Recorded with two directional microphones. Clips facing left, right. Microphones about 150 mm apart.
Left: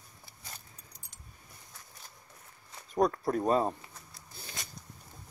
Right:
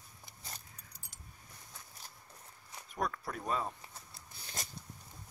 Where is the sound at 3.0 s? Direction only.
40° left (ahead or behind).